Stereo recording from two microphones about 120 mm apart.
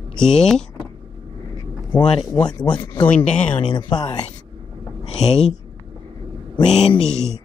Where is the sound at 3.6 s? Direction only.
40° left (ahead or behind).